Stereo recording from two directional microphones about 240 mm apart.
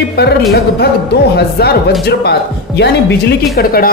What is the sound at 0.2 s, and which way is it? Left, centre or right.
Speech, left.